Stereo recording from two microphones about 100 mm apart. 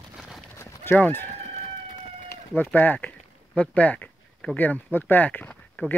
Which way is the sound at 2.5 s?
20° left (ahead or behind).